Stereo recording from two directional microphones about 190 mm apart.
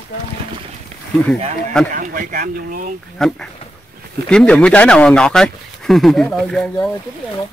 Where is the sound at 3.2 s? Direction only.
Centre (ahead or behind).